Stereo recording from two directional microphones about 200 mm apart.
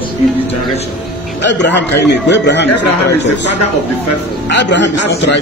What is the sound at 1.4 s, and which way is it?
Speech, 60° left (ahead or behind).